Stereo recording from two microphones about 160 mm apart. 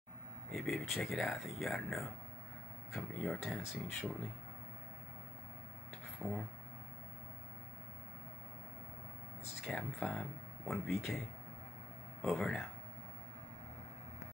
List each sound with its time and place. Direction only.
0.5 s speech: centre (ahead or behind)
9.7 s speech: centre (ahead or behind)
12.2 s speech: centre (ahead or behind)